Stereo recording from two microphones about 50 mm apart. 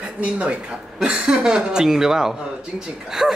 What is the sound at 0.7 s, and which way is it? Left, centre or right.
Speech, centre.